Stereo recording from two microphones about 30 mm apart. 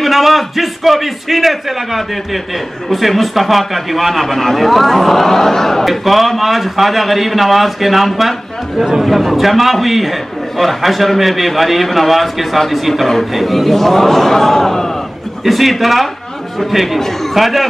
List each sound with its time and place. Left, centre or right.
0.0 s a man's voice: centre
5.9 s a man's voice: centre
15.4 s a man's voice: centre
17.0 s a man's voice: centre